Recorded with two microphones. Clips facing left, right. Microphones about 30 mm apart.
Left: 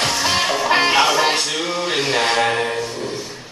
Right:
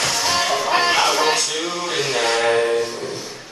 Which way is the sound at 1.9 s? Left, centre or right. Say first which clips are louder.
Left 1 dB; left.